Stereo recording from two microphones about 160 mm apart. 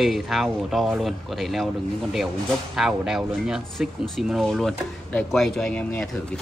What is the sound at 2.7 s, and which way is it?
Speech, centre (ahead or behind).